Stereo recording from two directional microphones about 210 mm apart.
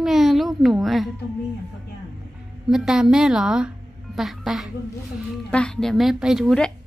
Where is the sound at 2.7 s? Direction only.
Centre (ahead or behind).